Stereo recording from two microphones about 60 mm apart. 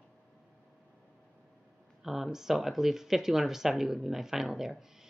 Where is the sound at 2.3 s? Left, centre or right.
Centre.